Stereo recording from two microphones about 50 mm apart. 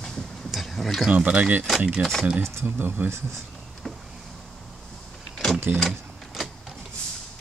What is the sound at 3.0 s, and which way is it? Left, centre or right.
Speech, right.